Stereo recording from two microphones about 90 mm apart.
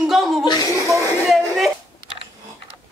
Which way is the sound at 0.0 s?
5° right (ahead or behind).